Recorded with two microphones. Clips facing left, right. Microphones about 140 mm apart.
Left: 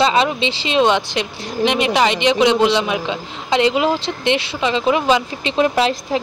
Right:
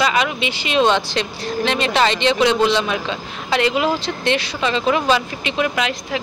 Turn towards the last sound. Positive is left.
turn(degrees=35)  # may be behind; listen again after turning